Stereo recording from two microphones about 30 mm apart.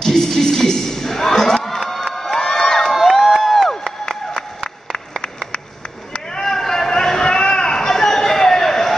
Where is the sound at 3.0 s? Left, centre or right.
Centre.